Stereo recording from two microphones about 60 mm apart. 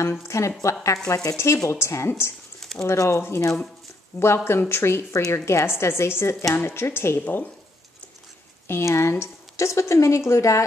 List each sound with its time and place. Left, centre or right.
0.3 s speech: left
1.3 s a woman's voice: left
4.1 s speech: left
4.5 s a woman's voice: left
8.6 s a woman's voice: left